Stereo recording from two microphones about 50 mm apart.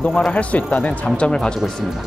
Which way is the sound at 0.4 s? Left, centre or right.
Left.